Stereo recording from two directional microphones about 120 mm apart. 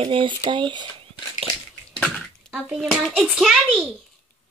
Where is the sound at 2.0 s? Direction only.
10° left (ahead or behind).